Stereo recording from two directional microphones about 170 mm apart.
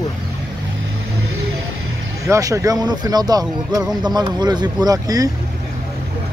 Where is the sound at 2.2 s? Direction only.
20° right (ahead or behind).